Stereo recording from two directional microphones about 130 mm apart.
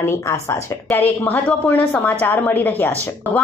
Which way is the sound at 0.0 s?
20° left (ahead or behind).